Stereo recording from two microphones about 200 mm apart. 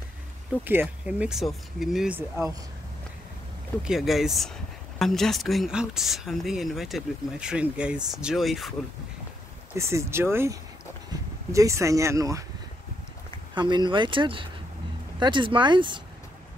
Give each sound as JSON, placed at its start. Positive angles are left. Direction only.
{"t": 0.7, "sound": "speech", "side_deg": -10}
{"t": 3.8, "sound": "speech", "side_deg": 0}
{"t": 9.8, "sound": "speech", "side_deg": -15}
{"t": 13.6, "sound": "speech", "side_deg": -25}